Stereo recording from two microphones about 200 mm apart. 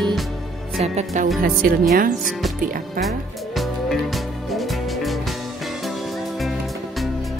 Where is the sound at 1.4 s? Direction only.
45° right (ahead or behind).